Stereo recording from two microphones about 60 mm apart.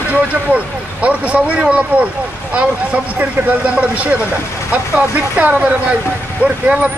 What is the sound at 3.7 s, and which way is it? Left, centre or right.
Speech, right.